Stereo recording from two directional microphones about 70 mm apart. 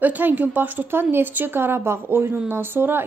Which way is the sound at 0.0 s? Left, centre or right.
Right.